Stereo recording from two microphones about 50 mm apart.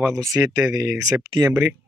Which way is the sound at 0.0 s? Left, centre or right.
Right.